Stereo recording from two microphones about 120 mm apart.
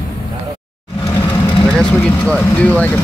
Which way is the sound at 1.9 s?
10° left (ahead or behind).